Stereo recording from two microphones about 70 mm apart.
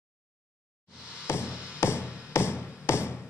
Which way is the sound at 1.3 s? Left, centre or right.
Left.